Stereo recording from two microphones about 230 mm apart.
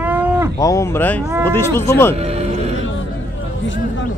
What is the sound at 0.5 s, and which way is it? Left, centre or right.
Speech, centre.